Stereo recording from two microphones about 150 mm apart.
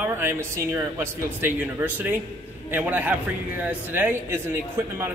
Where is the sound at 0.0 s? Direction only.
15° right (ahead or behind).